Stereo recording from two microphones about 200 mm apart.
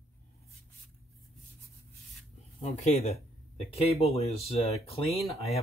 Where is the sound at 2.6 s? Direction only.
30° left (ahead or behind).